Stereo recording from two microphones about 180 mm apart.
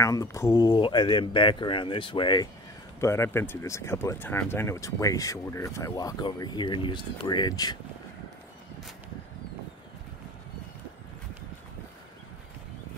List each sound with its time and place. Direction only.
0.0 s speech: 15° left (ahead or behind)